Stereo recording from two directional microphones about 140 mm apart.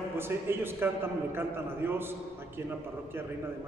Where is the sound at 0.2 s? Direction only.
15° right (ahead or behind).